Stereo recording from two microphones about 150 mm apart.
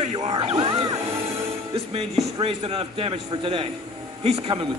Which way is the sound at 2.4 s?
40° right (ahead or behind).